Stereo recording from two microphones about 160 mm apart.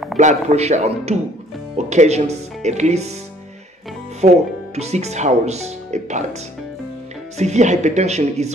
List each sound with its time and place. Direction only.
0.2 s speech: 45° right (ahead or behind)
4.2 s speech: 45° right (ahead or behind)
7.3 s speech: 45° right (ahead or behind)